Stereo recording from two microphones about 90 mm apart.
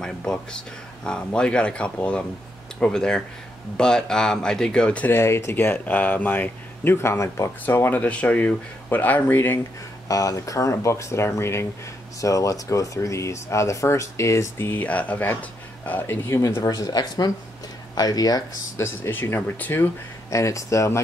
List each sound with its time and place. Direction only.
0.0 s speech: 10° left (ahead or behind)
5.1 s speech: 30° left (ahead or behind)
7.6 s speech: 20° left (ahead or behind)
10.0 s speech: 40° left (ahead or behind)
18.8 s speech: 25° left (ahead or behind)
20.2 s speech: 35° left (ahead or behind)